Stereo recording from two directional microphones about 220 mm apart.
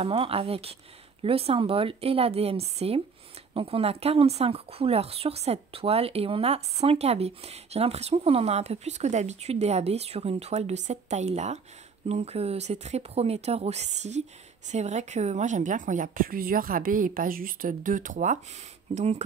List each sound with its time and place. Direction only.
0.0 s a woman's voice: 25° right (ahead or behind)